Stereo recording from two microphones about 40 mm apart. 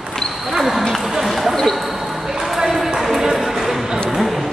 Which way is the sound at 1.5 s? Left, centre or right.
Centre.